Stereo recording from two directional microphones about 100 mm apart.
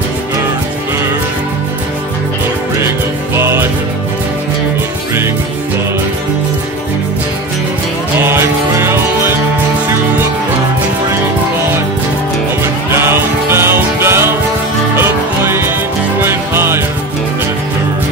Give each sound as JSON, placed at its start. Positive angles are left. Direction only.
{"t": 3.3, "sound": "music", "side_deg": -25}
{"t": 8.2, "sound": "music", "side_deg": -25}
{"t": 13.5, "sound": "music", "side_deg": -25}
{"t": 16.2, "sound": "music", "side_deg": -25}